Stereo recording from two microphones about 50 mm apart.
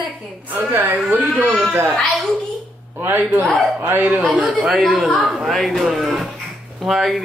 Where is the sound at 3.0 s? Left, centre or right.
Right.